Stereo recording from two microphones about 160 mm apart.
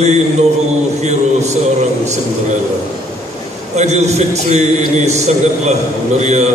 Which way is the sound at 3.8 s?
45° right (ahead or behind).